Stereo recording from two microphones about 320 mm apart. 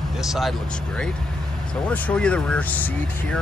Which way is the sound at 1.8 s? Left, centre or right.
Centre.